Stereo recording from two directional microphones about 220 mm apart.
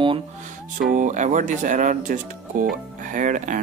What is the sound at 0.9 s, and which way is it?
Speech, 35° right (ahead or behind).